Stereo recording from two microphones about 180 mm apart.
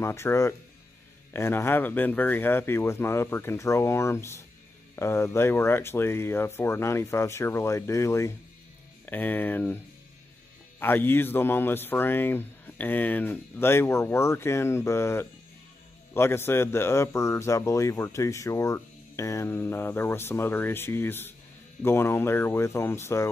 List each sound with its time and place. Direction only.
0.0 s a man's voice: 15° left (ahead or behind)
10.8 s a man's voice: 10° left (ahead or behind)